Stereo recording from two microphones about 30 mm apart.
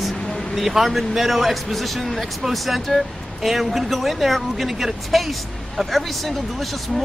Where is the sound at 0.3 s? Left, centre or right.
Centre.